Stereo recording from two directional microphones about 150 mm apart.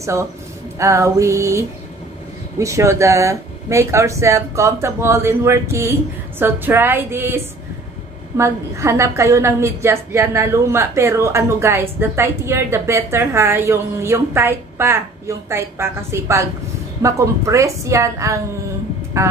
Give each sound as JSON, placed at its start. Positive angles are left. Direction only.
{"t": 0.0, "sound": "a woman's voice", "side_deg": -20}